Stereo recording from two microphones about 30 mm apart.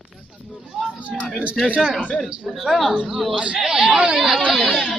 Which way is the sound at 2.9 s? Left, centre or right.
Right.